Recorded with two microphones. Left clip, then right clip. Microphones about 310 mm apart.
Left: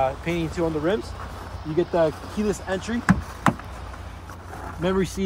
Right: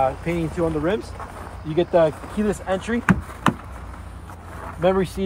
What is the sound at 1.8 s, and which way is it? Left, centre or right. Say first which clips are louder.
Speech: right 4 dB; right.